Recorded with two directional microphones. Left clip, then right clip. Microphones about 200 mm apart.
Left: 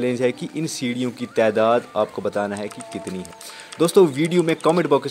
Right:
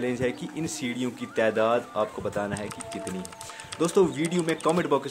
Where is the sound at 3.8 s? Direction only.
35° left (ahead or behind).